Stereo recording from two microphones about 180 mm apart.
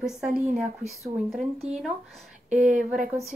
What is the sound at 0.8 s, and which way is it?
Speech, 40° right (ahead or behind).